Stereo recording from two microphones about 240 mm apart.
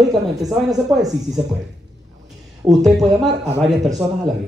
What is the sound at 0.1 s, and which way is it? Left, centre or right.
Speech, centre.